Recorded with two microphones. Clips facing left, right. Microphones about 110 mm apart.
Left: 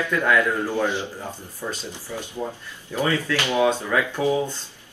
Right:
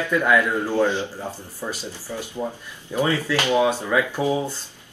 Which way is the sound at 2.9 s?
15° right (ahead or behind).